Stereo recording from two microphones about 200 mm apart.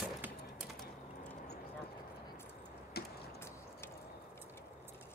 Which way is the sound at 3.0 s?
50° left (ahead or behind).